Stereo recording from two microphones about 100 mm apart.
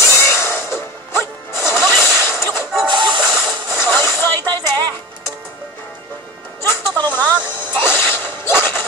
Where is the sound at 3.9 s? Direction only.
25° left (ahead or behind).